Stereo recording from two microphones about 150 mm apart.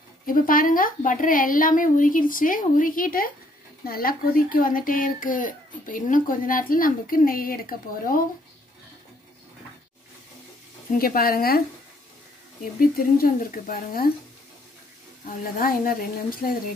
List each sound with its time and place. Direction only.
0.3 s a child's voice: 70° left (ahead or behind)
10.9 s a woman's voice: 75° left (ahead or behind)
12.9 s a woman's voice: 75° left (ahead or behind)
15.2 s a child's voice: 65° left (ahead or behind)